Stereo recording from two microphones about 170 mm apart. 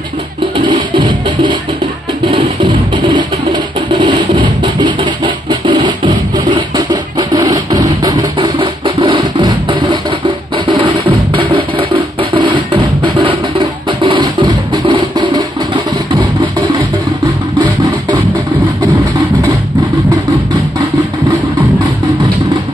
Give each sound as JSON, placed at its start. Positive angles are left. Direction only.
{"t": 0.7, "sound": "music", "side_deg": -25}
{"t": 4.0, "sound": "music", "side_deg": -25}